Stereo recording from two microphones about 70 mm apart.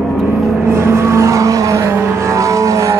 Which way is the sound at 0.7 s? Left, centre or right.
Right.